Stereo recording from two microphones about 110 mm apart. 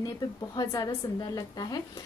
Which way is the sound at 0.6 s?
35° left (ahead or behind).